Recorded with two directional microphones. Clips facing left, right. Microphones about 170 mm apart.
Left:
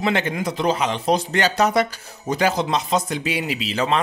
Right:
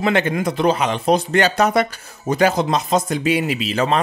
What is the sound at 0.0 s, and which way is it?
Speech, 55° right (ahead or behind).